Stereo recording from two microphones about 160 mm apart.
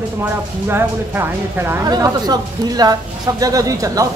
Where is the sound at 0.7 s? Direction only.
15° right (ahead or behind).